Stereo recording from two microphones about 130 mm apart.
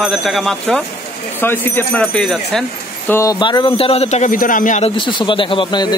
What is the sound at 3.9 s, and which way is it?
Speech, 55° left (ahead or behind).